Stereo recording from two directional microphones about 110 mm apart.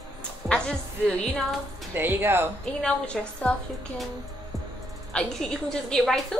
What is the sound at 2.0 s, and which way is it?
Speech, 20° right (ahead or behind).